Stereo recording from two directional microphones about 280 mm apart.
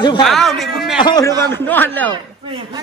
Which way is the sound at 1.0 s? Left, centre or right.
Centre.